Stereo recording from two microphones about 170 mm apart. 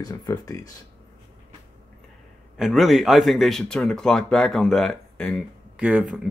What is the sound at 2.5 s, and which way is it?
Speech, centre (ahead or behind).